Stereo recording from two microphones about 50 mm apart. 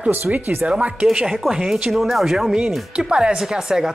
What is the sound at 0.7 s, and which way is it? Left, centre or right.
Speech, right.